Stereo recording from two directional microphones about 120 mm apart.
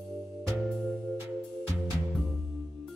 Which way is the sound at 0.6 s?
Centre (ahead or behind).